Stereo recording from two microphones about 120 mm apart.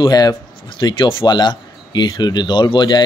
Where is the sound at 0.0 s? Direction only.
35° left (ahead or behind).